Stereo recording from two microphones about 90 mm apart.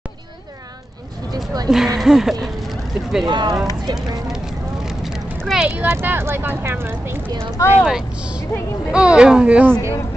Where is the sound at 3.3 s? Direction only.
55° right (ahead or behind).